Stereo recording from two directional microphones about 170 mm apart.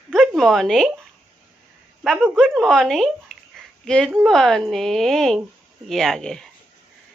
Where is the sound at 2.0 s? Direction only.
Centre (ahead or behind).